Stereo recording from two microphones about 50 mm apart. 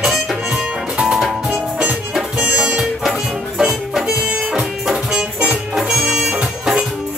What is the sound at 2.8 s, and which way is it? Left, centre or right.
Music, centre.